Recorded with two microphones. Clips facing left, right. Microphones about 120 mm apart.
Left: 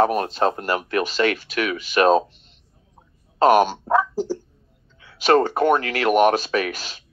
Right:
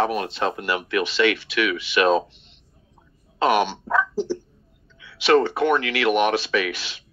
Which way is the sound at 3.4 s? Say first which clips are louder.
Left 4 dB; 40° left (ahead or behind).